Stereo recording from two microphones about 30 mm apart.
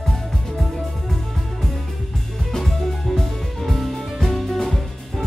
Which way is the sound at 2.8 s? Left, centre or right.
Centre.